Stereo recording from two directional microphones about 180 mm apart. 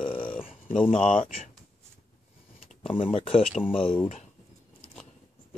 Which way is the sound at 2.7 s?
5° left (ahead or behind).